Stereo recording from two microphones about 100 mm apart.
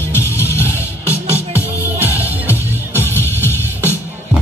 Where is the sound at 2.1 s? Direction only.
20° right (ahead or behind).